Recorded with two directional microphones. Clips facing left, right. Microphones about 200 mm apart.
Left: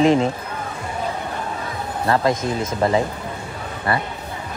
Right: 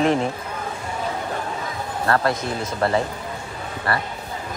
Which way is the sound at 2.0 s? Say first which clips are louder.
Left 2 dB; 15° left (ahead or behind).